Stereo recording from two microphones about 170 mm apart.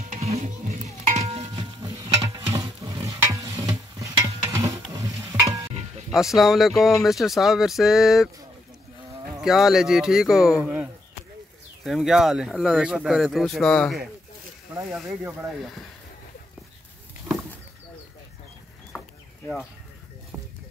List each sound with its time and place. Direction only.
0.1 s music: 40° right (ahead or behind)
1.0 s stir: 40° right (ahead or behind); by 5.7 s 20° right (ahead or behind)
6.1 s speech: centre (ahead or behind)
9.4 s speech: centre (ahead or behind)
14.7 s speech: 15° right (ahead or behind)
15.4 s speech: centre (ahead or behind)
18.9 s a sound: 5° left (ahead or behind)